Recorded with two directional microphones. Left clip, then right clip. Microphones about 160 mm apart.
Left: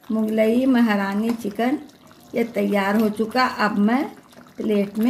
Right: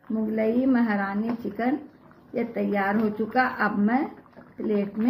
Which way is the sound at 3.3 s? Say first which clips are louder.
Left 3 dB; 75° left (ahead or behind).